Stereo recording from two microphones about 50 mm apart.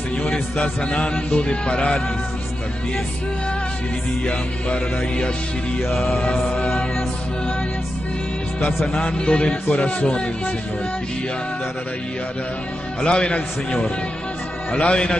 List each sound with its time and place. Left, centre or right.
0.6 s a man's voice: left
4.3 s a man's voice: left
6.2 s music: left
8.8 s a man's voice: left
13.0 s a man's voice: left